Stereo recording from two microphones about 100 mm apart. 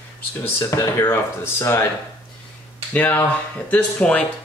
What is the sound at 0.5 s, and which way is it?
Speech, 30° left (ahead or behind).